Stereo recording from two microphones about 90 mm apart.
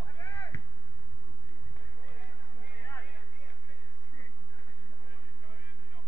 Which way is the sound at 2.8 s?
20° left (ahead or behind).